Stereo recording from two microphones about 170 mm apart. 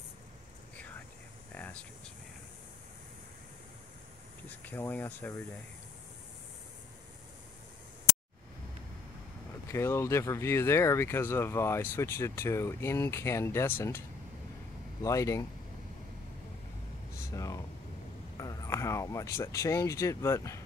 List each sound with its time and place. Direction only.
1.5 s air conditioning: 10° left (ahead or behind)
4.6 s speech: 10° left (ahead or behind)
9.7 s speech: 15° left (ahead or behind)
15.0 s speech: 20° left (ahead or behind)
17.2 s speech: 20° left (ahead or behind)